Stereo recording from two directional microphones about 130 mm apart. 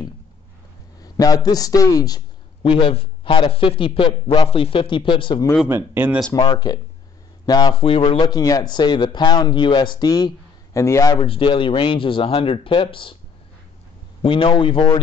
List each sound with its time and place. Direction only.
1.0 s a man's voice: 30° left (ahead or behind)
2.6 s speech: 45° left (ahead or behind)
5.7 s speech: 15° right (ahead or behind)
6.3 s a man's voice: 30° left (ahead or behind); by 8.3 s 50° left (ahead or behind)
8.3 s speech: 30° left (ahead or behind)
11.1 s speech: 45° left (ahead or behind)
14.2 s speech: 40° left (ahead or behind)